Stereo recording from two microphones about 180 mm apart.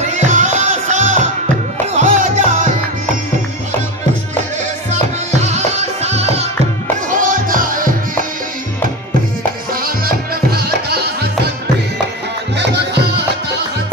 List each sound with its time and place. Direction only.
0.0 s music: 40° right (ahead or behind)
5.3 s music: 40° right (ahead or behind)
7.1 s music: 50° right (ahead or behind)
9.8 s music: 55° right (ahead or behind)
12.5 s music: 70° right (ahead or behind)